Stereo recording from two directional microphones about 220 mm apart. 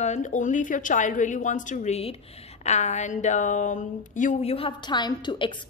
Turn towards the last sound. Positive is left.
turn(degrees=20)  # may be behind; listen again after turning